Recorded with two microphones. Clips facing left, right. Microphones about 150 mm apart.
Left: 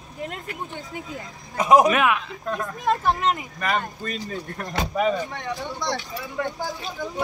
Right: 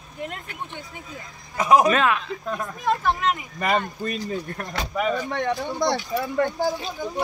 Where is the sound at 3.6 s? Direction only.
20° right (ahead or behind).